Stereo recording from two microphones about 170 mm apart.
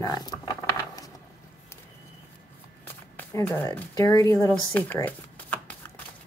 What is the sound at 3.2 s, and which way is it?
Speech, 10° left (ahead or behind).